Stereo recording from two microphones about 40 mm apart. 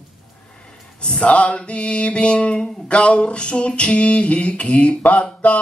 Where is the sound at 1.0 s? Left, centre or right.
Left.